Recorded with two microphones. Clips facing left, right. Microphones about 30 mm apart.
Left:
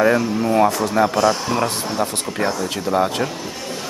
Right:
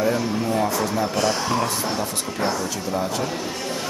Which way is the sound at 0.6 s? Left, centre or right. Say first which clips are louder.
Left 8 dB; left.